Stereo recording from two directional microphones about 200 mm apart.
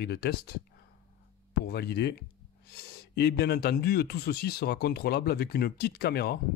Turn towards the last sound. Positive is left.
turn(degrees=50)  # may be behind; listen again after turning